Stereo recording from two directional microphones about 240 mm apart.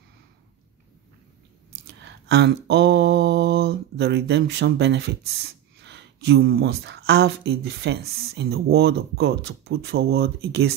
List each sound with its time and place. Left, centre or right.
1.9 s mantra: right